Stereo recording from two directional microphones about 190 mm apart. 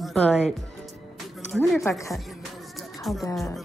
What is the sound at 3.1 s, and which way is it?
Speech, centre (ahead or behind).